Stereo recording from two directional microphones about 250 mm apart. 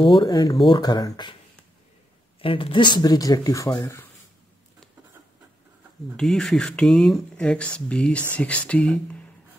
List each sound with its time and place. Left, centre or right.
0.0 s speech: centre
2.4 s speech: left
6.1 s speech: centre